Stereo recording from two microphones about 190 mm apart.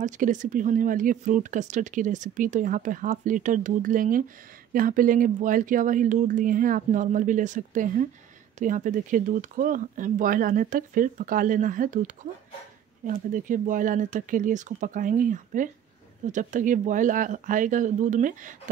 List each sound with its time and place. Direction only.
0.0 s speech: 40° right (ahead or behind)